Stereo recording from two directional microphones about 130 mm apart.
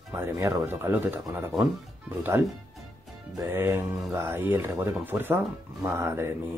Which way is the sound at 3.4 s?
20° right (ahead or behind).